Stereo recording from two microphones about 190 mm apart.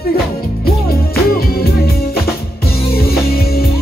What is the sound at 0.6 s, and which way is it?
Music, 55° left (ahead or behind).